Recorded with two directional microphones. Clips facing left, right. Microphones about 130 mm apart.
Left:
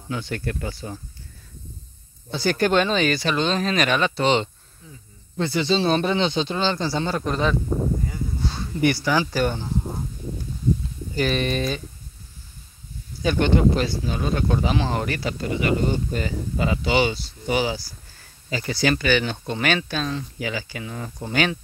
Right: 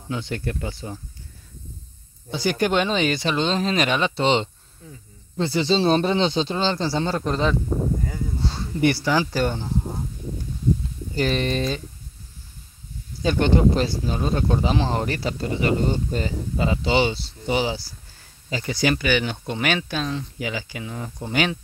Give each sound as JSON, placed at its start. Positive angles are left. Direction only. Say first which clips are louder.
{"t": 0.1, "sound": "speech", "louder": "even", "side_deg": -20}
{"t": 2.3, "sound": "speech", "louder": "left 1 dB", "side_deg": -15}
{"t": 8.5, "sound": "speech", "louder": "right 1 dB", "side_deg": -30}
{"t": 11.1, "sound": "speech", "louder": "even", "side_deg": -25}
{"t": 13.2, "sound": "speech", "louder": "even", "side_deg": -30}